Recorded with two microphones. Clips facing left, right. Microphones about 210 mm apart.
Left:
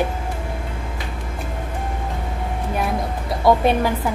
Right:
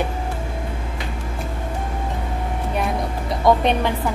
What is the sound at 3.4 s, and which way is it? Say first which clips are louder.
Speech: left 1 dB; 5° left (ahead or behind).